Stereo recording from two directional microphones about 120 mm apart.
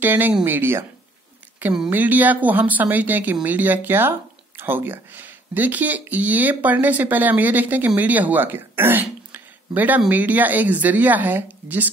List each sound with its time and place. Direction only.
0.0 s speech: 15° right (ahead or behind)
1.9 s speech: 15° right (ahead or behind)